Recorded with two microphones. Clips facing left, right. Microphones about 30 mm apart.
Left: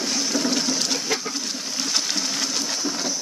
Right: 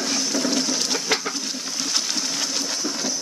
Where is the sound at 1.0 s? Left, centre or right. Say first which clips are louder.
Right 2 dB; right.